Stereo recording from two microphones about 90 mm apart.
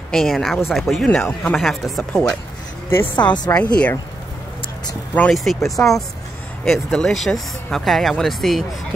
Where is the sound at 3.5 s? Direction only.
15° left (ahead or behind).